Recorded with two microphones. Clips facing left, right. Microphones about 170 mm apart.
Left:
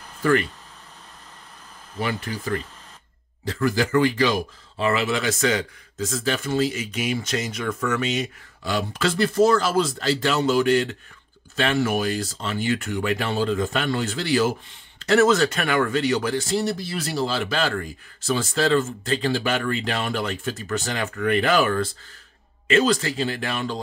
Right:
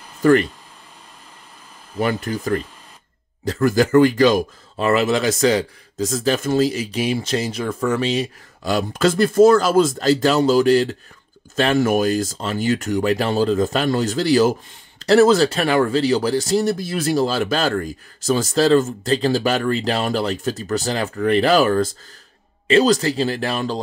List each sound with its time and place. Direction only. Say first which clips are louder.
0.2 s speech: right 6 dB; 40° right (ahead or behind)
2.0 s speech: right 6 dB; 45° right (ahead or behind)